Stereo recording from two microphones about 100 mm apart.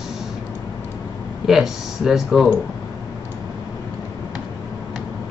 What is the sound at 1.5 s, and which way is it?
Speech, 5° right (ahead or behind).